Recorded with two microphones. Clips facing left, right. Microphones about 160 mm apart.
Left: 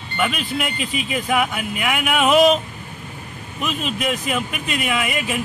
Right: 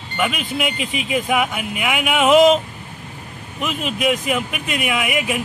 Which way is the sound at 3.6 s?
15° right (ahead or behind).